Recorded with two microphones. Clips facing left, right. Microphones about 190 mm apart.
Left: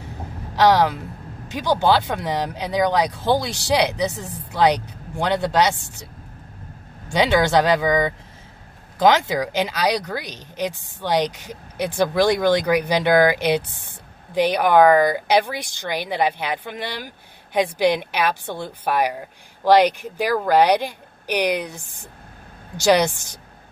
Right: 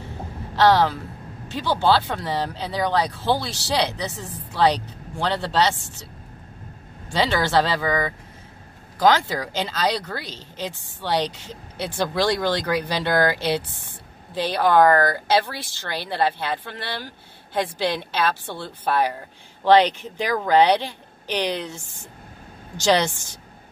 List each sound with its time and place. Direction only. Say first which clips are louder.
0.6 s speech: left 1 dB; 15° left (ahead or behind)
7.1 s speech: left 4 dB; 15° left (ahead or behind)